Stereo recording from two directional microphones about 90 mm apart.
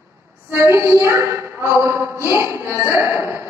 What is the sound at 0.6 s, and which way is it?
A woman's voice, 30° right (ahead or behind).